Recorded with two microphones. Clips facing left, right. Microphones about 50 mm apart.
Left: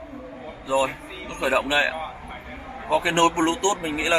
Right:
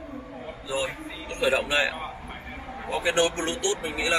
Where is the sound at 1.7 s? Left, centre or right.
Left.